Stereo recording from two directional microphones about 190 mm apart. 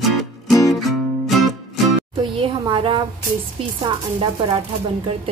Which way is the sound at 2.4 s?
25° right (ahead or behind).